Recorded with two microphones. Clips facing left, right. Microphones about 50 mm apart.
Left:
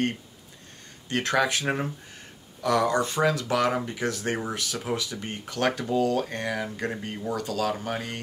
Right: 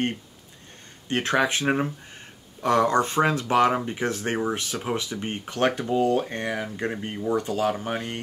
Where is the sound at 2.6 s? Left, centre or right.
Right.